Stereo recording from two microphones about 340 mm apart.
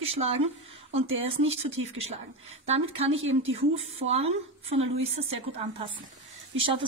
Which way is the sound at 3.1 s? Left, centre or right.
Right.